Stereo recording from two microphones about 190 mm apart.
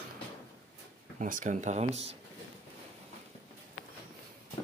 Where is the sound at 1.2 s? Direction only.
45° right (ahead or behind).